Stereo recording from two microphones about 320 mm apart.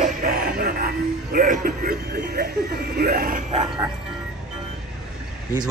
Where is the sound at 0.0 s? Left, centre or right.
Right.